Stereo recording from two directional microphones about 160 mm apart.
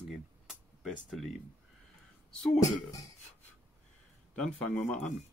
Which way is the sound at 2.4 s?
45° left (ahead or behind).